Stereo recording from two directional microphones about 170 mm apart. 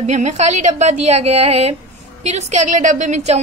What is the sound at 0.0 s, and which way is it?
A woman's voice, 45° right (ahead or behind).